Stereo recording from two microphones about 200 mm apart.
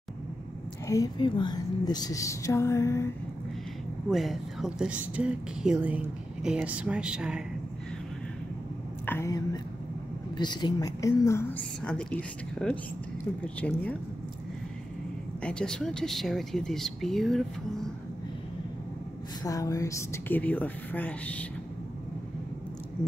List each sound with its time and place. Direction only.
0.8 s a woman's voice: 15° left (ahead or behind)
4.1 s speech: centre (ahead or behind)
9.0 s a woman's voice: 10° left (ahead or behind)
15.4 s speech: 5° left (ahead or behind)
19.4 s a woman's voice: 15° left (ahead or behind)